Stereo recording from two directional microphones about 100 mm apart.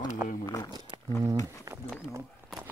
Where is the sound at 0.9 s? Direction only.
50° right (ahead or behind).